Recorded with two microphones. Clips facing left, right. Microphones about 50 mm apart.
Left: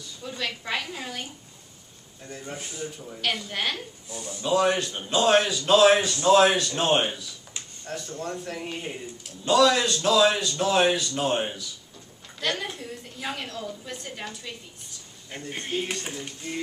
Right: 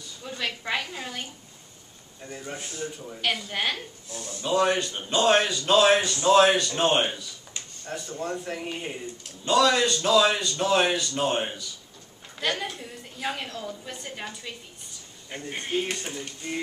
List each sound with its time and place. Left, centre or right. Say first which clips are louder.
0.2 s a sound: even; centre
2.2 s a man's voice: right 1 dB; centre
4.1 s speech: left 1 dB; centre
4.4 s a man's voice: left 1 dB; centre